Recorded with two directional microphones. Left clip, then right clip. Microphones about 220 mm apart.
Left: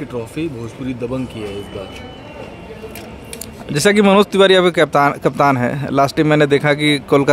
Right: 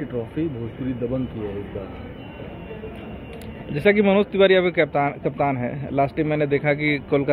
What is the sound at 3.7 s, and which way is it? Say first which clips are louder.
Speech: left 6 dB; 50° left (ahead or behind).